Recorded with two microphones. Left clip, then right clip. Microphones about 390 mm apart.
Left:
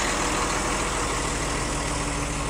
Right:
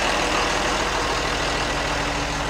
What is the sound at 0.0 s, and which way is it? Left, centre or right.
Vehicle, right.